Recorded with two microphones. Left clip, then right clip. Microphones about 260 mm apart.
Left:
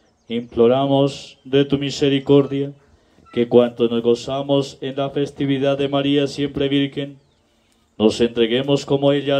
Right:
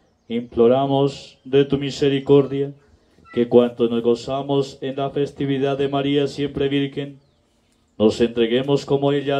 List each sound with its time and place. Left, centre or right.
0.3 s speech: left